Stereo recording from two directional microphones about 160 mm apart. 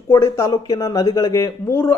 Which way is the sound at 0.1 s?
20° left (ahead or behind).